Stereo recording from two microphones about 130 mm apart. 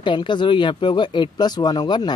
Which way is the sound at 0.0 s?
40° left (ahead or behind).